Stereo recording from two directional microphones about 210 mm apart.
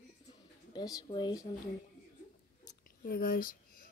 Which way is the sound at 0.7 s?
20° left (ahead or behind).